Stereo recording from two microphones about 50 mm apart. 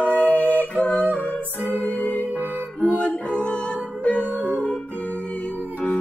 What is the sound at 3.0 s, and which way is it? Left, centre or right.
Music, left.